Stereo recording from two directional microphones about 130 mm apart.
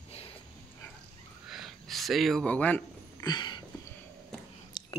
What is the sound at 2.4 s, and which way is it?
Speech, 10° left (ahead or behind).